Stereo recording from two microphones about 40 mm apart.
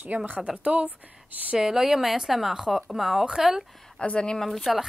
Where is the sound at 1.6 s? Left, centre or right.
Centre.